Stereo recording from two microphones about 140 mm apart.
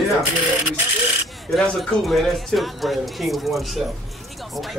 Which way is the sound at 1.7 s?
Centre (ahead or behind).